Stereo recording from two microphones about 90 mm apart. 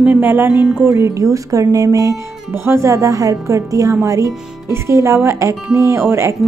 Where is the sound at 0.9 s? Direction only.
35° right (ahead or behind).